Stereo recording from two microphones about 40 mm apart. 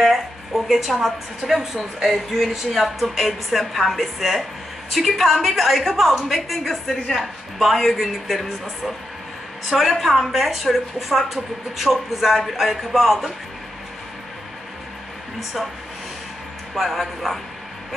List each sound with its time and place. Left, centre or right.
0.0 s a woman's voice: centre
16.7 s a woman's voice: centre